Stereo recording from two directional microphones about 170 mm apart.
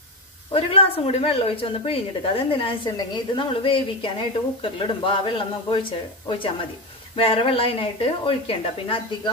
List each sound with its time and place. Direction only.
0.5 s a woman's voice: 35° left (ahead or behind)